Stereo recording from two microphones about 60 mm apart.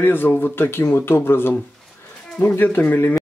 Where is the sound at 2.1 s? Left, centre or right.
Centre.